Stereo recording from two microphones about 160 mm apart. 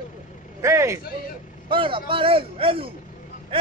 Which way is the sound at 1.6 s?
30° right (ahead or behind).